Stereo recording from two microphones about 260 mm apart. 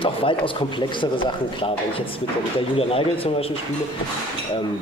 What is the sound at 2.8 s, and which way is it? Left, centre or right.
Speech, left.